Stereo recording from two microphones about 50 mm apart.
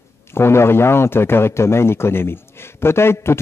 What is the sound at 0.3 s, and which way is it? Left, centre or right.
A man's voice, left.